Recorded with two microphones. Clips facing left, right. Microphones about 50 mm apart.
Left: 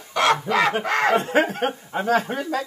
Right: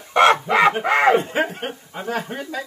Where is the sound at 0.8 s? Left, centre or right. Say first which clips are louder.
Right 5 dB; right.